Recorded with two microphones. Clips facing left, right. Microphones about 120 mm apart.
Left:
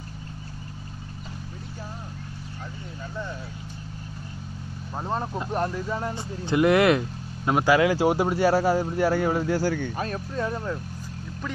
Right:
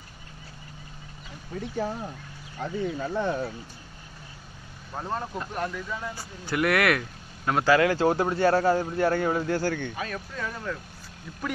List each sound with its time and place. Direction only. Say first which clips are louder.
2.6 s speech: right 12 dB; 75° right (ahead or behind)
4.9 s speech: left 2 dB; 20° left (ahead or behind)
5.5 s speech: left 7 dB; 35° left (ahead or behind)
6.1 s speech: left 6 dB; 20° left (ahead or behind)
9.9 s speech: left 5 dB; 30° left (ahead or behind)